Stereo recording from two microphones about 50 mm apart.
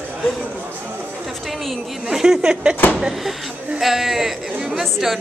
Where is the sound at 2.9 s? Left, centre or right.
Centre.